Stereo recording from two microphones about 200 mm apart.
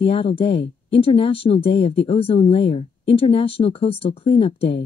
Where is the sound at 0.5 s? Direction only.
60° left (ahead or behind).